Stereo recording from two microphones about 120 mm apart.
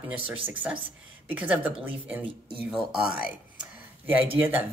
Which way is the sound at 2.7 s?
10° right (ahead or behind).